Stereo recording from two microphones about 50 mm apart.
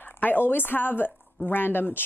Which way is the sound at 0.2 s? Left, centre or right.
Left.